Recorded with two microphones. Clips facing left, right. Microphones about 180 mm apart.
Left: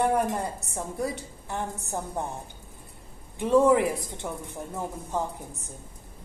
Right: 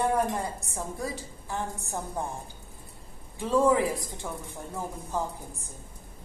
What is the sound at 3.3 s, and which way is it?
A man's voice, 15° left (ahead or behind).